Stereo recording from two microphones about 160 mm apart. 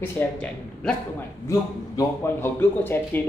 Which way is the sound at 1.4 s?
20° left (ahead or behind).